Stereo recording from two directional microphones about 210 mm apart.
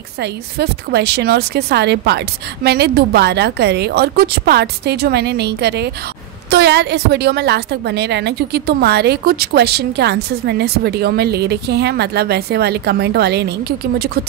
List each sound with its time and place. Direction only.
0.2 s a woman's voice: 50° right (ahead or behind)